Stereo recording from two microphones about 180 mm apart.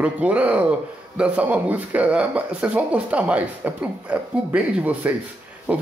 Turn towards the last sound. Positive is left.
turn(degrees=-5)  # may be behind; listen again after turning